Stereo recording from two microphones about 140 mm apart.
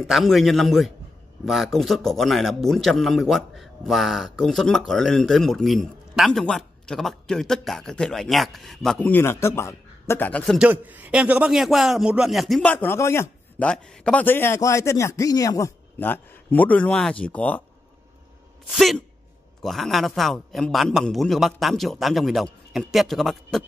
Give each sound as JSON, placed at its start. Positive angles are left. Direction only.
{"t": 0.0, "sound": "a man's voice", "side_deg": 0}
{"t": 10.4, "sound": "a man's voice", "side_deg": 0}
{"t": 10.7, "sound": "a man's voice", "side_deg": -10}
{"t": 12.7, "sound": "a man's voice", "side_deg": 15}
{"t": 13.6, "sound": "a man's voice", "side_deg": 5}
{"t": 18.7, "sound": "a man's voice", "side_deg": 0}